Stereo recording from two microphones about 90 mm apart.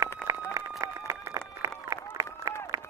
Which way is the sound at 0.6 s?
40° right (ahead or behind).